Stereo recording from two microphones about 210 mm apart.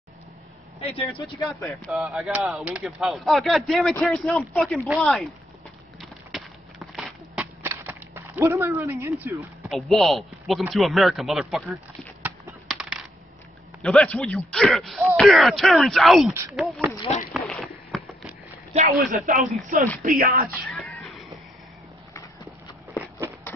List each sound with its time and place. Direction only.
0.7 s speech: 25° left (ahead or behind)
1.6 s speech: centre (ahead or behind)
5.9 s a sound: centre (ahead or behind)
9.7 s speech: centre (ahead or behind)
12.2 s a sound: 5° right (ahead or behind)
13.8 s speech: 5° left (ahead or behind)
17.3 s a sound: centre (ahead or behind)
18.7 s a man's voice: 30° right (ahead or behind)
20.7 s music: 5° left (ahead or behind)